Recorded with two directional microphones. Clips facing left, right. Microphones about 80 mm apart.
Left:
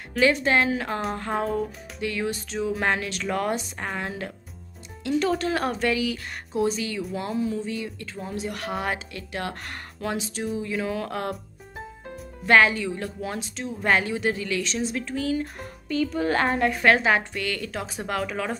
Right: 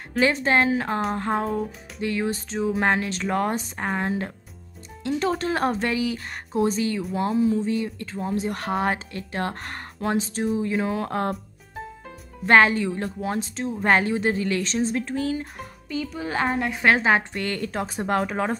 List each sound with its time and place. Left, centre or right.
0.1 s a woman's voice: right
12.4 s speech: right
15.9 s a woman's voice: centre; by 18.6 s right